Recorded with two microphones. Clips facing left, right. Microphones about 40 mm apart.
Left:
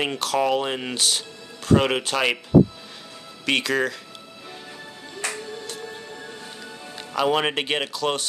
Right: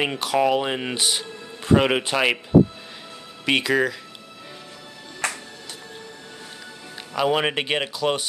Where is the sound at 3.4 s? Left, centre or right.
Centre.